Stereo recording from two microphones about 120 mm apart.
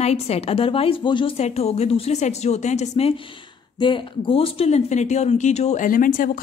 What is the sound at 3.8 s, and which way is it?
Speech, 45° left (ahead or behind).